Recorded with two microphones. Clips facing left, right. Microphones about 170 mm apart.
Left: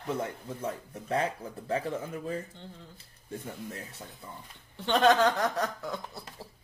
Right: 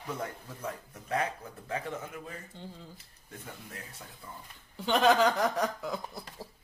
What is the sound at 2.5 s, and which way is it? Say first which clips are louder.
Speech: right 2 dB; 10° right (ahead or behind).